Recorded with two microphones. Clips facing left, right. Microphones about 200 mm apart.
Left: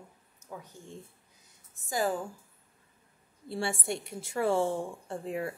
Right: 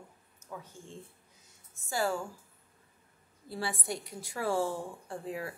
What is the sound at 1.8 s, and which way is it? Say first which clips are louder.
Speech: left 2 dB; 15° left (ahead or behind).